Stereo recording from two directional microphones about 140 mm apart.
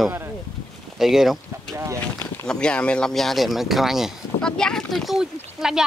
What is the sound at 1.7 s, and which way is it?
Speech, 20° right (ahead or behind).